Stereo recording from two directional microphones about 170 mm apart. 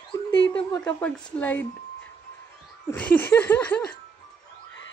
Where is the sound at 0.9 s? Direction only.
10° left (ahead or behind).